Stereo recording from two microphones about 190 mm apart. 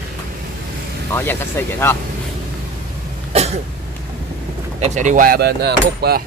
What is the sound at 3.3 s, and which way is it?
Cough, 35° right (ahead or behind).